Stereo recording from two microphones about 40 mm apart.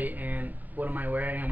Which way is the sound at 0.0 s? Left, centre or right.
Right.